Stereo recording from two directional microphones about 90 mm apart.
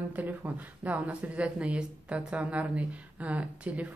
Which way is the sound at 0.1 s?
20° right (ahead or behind).